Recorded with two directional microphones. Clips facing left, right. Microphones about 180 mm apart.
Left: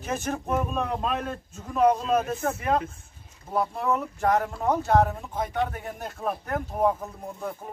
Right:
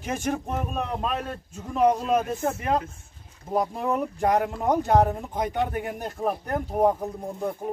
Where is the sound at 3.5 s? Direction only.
15° right (ahead or behind).